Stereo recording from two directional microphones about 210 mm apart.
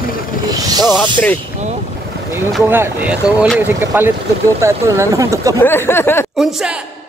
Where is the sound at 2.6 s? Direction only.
10° right (ahead or behind).